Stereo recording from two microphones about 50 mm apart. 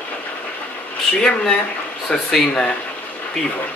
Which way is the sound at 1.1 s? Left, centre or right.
Centre.